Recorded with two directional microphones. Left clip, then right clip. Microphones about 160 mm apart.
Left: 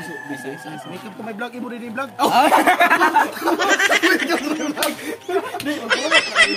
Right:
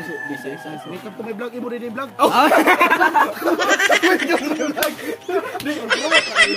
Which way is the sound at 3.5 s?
Centre (ahead or behind).